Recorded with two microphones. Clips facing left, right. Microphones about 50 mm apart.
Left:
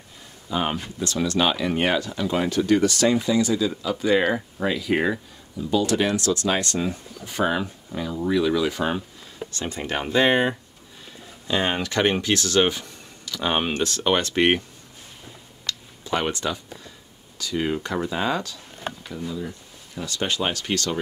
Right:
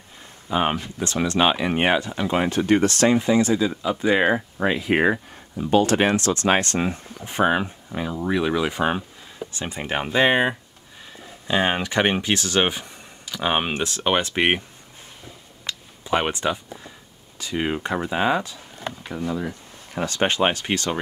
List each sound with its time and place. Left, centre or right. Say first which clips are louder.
0.5 s speech: right 3 dB; right
4.7 s speech: right 3 dB; right
5.6 s speech: right 3 dB; right; by 14.6 s centre
15.6 s a sound: left 1 dB; right
17.4 s speech: even; right
19.0 s speech: right 7 dB; right